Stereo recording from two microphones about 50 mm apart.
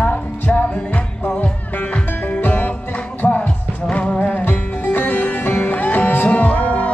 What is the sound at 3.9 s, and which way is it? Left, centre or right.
Music, left.